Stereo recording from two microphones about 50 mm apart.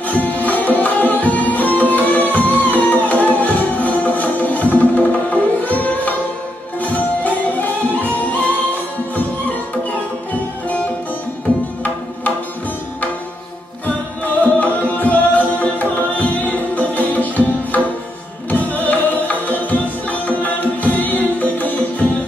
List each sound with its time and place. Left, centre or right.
0.1 s tabla: left
3.3 s music: left
14.4 s music: left